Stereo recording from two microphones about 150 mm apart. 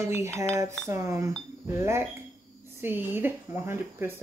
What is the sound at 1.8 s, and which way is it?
Speech, 20° right (ahead or behind).